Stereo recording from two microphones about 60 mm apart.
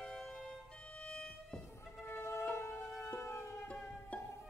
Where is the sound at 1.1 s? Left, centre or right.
Centre.